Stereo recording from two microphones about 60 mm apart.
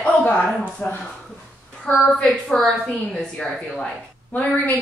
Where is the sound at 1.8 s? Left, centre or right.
Centre.